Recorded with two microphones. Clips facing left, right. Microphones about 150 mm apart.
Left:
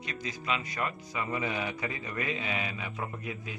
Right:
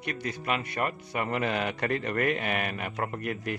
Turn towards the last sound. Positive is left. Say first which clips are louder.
# right 7 dB
turn(degrees=-70)  # may be behind; listen again after turning